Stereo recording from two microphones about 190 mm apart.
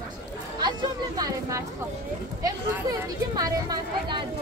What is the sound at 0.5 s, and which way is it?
Speech, 20° right (ahead or behind).